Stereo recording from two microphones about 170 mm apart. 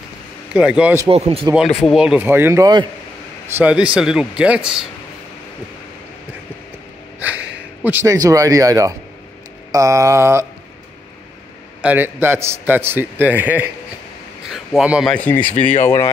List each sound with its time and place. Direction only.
0.5 s speech: 5° right (ahead or behind)
1.1 s speech: 35° right (ahead or behind)
1.8 s a man's voice: centre (ahead or behind); by 2.9 s 20° right (ahead or behind)
3.5 s speech: 10° right (ahead or behind)
7.2 s a sound: 10° right (ahead or behind)
7.5 s a man's voice: 10° right (ahead or behind)
11.8 s a man's voice: 10° right (ahead or behind)
15.1 s speech: 10° left (ahead or behind)
15.5 s speech: 40° left (ahead or behind)